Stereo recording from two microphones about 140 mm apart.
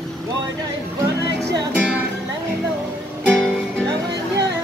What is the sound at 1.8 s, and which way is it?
Music, 10° right (ahead or behind).